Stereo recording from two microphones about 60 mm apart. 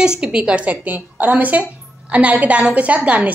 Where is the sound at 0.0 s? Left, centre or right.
Centre.